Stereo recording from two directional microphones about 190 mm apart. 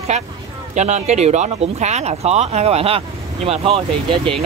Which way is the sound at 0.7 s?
35° right (ahead or behind).